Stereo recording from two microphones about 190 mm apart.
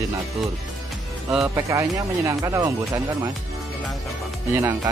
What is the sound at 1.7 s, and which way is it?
Speech, 15° right (ahead or behind).